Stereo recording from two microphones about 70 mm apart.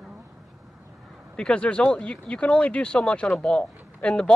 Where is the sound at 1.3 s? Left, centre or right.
Centre.